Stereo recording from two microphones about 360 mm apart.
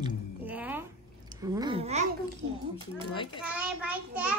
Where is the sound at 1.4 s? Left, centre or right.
Centre.